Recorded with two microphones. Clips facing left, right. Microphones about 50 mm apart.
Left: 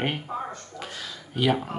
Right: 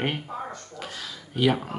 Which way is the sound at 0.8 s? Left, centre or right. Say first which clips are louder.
Even; centre.